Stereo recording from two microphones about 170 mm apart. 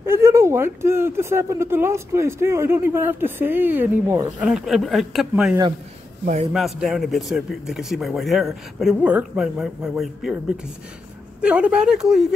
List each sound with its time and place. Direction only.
0.0 s speech: 15° right (ahead or behind)
4.5 s a man's voice: centre (ahead or behind)
6.2 s a man's voice: 45° right (ahead or behind)
6.5 s a man's voice: centre (ahead or behind)
11.4 s a man's voice: 5° right (ahead or behind)